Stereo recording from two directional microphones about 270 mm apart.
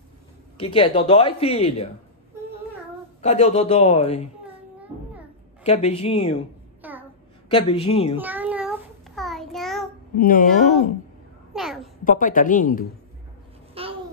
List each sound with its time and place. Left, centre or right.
0.6 s speech: centre
3.2 s speech: left
5.6 s speech: left
6.8 s a sound: centre
7.4 s speech: centre
8.2 s child singing: centre
10.1 s speech: left
11.5 s a sound: centre
12.0 s speech: left
13.8 s babbling: right